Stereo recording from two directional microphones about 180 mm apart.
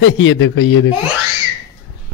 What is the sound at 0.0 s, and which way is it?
Speech, 90° left.